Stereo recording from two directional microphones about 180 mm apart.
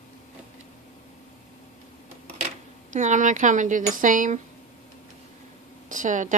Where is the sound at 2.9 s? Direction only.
45° right (ahead or behind).